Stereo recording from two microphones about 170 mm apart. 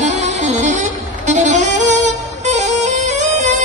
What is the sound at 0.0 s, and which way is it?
Music, 45° right (ahead or behind).